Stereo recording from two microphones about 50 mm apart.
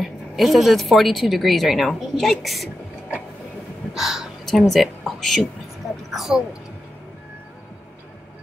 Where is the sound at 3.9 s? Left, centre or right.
Centre.